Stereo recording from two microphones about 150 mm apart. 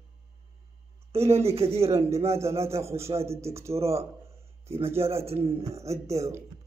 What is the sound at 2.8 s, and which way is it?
A man's voice, 20° right (ahead or behind).